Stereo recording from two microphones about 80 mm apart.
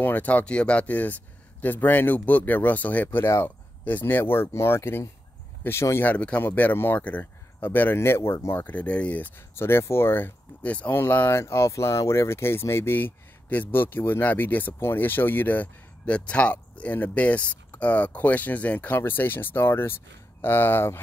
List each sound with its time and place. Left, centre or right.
0.0 s speech: left
6.0 s speech: centre
9.6 s speech: left